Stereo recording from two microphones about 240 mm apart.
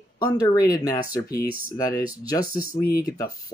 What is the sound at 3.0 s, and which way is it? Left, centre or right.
Speech, centre.